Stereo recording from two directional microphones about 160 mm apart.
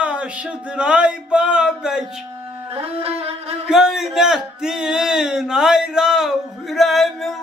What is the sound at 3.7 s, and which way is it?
Speech, centre (ahead or behind).